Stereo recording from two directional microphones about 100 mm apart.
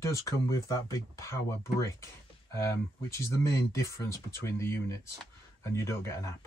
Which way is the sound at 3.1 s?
30° left (ahead or behind).